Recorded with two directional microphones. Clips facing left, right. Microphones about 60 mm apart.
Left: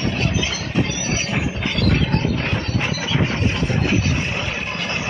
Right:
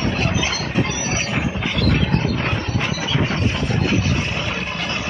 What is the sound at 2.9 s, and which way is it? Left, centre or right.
Vehicle, centre.